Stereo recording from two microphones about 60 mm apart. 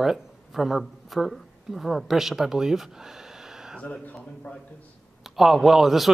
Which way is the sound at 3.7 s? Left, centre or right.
Left.